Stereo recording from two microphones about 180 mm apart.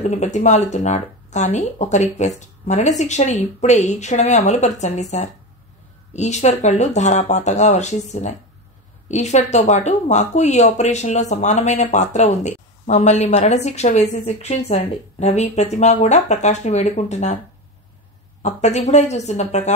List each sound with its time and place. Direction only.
0.0 s speech: 40° left (ahead or behind)
6.1 s speech: 40° left (ahead or behind)
18.4 s speech: 40° left (ahead or behind)